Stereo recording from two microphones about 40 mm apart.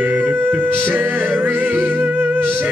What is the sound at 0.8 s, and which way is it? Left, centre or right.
Music, right.